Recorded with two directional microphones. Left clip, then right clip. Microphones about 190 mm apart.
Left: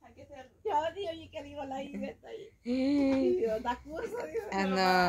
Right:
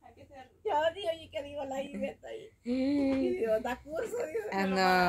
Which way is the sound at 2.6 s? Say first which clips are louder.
Left 1 dB; 10° left (ahead or behind).